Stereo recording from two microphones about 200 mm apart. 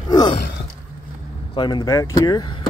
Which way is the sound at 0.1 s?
20° left (ahead or behind).